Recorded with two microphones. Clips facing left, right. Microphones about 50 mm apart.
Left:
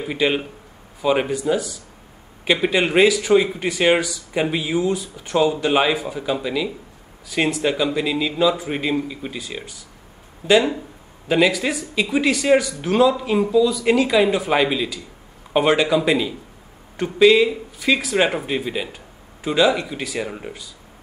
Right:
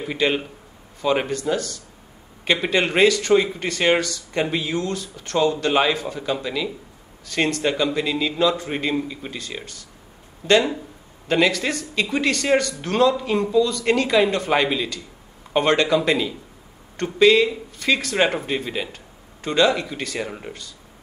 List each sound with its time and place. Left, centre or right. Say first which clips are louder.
0.0 s speech: left 1 dB; centre